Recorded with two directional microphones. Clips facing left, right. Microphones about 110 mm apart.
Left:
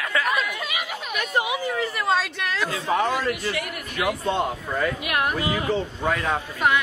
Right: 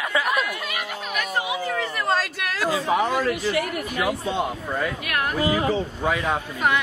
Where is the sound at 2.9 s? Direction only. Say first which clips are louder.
Left 1 dB; 5° right (ahead or behind).